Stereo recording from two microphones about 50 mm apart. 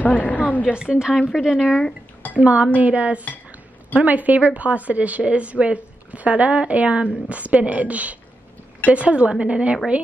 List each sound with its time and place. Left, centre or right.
0.0 s a woman's voice: left
0.7 s a woman's voice: centre
2.3 s speech: right